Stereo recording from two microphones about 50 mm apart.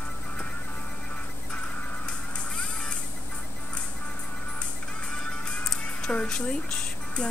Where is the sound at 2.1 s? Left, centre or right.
Left.